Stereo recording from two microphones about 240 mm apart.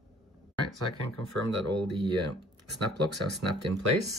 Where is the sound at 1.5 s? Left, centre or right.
Right.